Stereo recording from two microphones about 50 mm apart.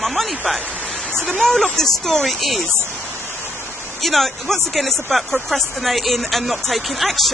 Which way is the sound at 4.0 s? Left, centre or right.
Centre.